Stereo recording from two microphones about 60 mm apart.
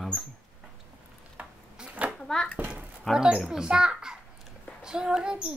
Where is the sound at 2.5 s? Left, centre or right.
Right.